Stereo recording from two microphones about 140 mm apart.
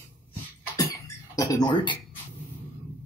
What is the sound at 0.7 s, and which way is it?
Cough, 25° left (ahead or behind).